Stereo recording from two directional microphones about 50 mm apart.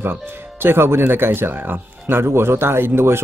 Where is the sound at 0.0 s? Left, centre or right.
Right.